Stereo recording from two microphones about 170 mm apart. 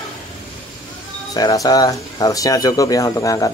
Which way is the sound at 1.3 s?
20° left (ahead or behind).